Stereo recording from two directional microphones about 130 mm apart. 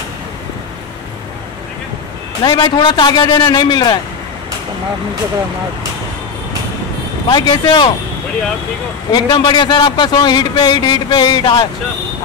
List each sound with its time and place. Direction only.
2.4 s a man's voice: 35° left (ahead or behind)
7.2 s a man's voice: 35° left (ahead or behind)
9.1 s a man's voice: 35° left (ahead or behind)